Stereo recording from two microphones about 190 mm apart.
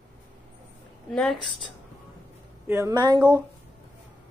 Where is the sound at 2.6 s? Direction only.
15° right (ahead or behind).